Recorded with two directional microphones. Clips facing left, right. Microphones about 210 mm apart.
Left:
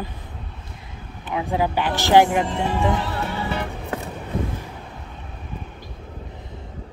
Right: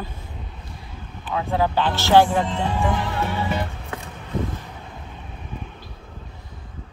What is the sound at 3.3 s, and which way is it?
Music, 20° right (ahead or behind).